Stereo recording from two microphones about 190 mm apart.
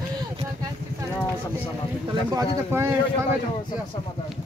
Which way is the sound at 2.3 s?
15° right (ahead or behind).